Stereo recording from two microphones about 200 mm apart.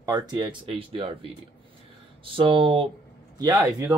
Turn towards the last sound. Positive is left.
turn(degrees=-20)  # may be behind; listen again after turning